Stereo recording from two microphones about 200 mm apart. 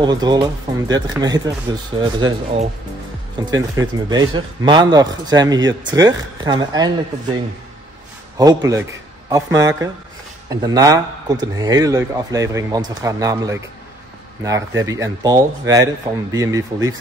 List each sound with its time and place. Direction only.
0.0 s speech: 20° right (ahead or behind)
8.4 s speech: 15° right (ahead or behind)